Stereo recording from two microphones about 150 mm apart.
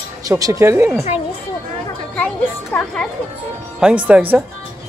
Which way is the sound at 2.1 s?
10° left (ahead or behind).